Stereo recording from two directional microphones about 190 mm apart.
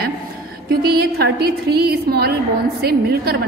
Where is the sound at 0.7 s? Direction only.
55° right (ahead or behind).